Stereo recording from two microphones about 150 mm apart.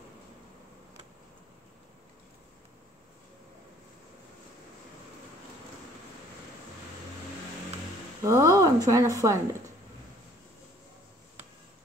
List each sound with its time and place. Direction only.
8.2 s speech: 20° right (ahead or behind)